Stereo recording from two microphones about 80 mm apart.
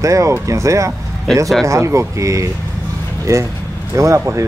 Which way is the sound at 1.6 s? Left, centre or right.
Right.